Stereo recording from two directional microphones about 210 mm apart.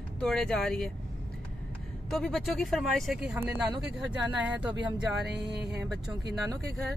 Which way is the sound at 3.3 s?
10° right (ahead or behind).